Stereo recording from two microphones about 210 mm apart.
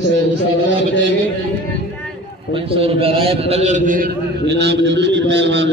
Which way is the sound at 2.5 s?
25° right (ahead or behind).